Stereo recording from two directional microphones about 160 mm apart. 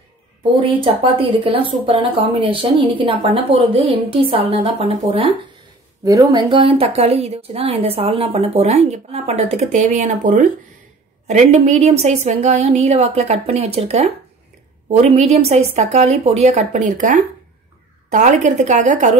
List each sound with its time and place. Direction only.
0.4 s a woman's voice: 30° right (ahead or behind); by 19.1 s 50° right (ahead or behind)